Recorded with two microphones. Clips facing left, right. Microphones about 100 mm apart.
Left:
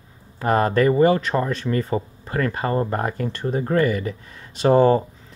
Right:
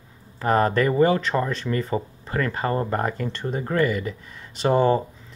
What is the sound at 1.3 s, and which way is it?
Speech, 5° left (ahead or behind).